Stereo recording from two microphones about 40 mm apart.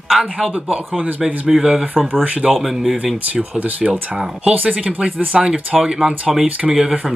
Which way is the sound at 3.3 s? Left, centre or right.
Right.